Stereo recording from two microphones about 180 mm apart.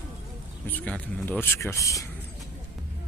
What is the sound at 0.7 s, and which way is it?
Speech, 10° left (ahead or behind).